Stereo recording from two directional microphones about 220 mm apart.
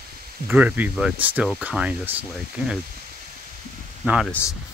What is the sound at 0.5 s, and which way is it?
Speech, 5° right (ahead or behind).